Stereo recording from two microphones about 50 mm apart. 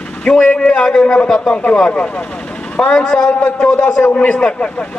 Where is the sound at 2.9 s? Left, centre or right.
Centre.